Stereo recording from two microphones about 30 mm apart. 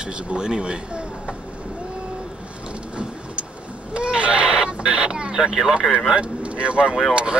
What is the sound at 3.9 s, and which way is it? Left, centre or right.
Chicken, right.